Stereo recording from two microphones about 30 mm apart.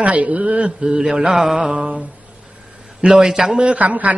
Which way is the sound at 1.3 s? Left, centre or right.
Centre.